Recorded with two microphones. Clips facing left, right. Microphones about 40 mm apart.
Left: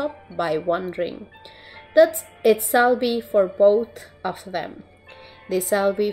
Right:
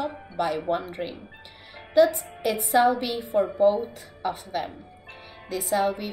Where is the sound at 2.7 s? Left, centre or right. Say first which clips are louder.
Left 3 dB; left.